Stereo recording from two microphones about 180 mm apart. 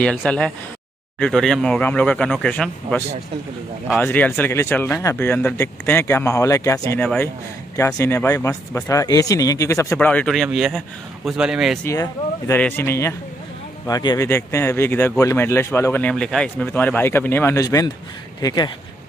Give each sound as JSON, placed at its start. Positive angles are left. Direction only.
{"t": 0.0, "sound": "speech", "side_deg": 5}
{"t": 4.0, "sound": "speech", "side_deg": 10}
{"t": 11.8, "sound": "speech", "side_deg": 15}